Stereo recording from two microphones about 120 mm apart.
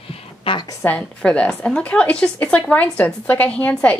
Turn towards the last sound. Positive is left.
turn(degrees=10)  # may be behind; listen again after turning